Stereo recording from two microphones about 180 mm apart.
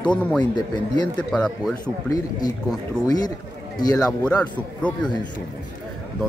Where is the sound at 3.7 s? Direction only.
20° left (ahead or behind).